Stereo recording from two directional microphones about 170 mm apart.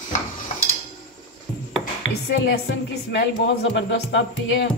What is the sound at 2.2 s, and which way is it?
A woman's voice, 75° left (ahead or behind).